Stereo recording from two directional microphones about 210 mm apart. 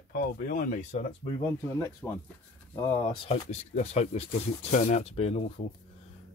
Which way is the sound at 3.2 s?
30° left (ahead or behind).